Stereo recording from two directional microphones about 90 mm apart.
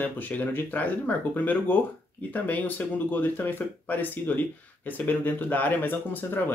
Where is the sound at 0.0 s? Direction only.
20° left (ahead or behind).